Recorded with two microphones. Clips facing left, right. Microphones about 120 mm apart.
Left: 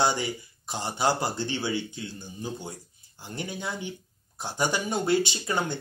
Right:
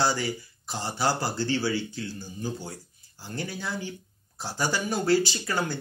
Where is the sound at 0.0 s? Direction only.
20° left (ahead or behind).